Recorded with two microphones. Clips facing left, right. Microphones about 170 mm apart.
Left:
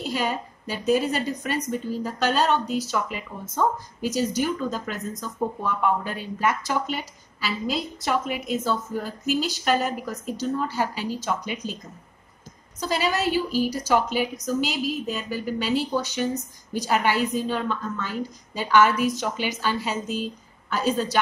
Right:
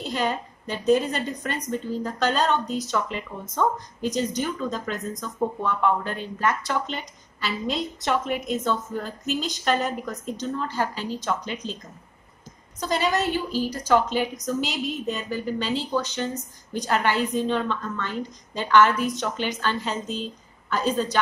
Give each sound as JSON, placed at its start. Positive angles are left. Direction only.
{"t": 0.1, "sound": "a woman's voice", "side_deg": 5}
{"t": 12.8, "sound": "a woman's voice", "side_deg": 5}